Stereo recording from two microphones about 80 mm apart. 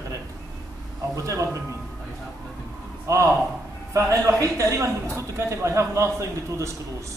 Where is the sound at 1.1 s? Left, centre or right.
Right.